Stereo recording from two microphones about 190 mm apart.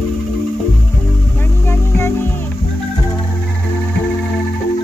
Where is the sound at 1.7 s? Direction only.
15° left (ahead or behind).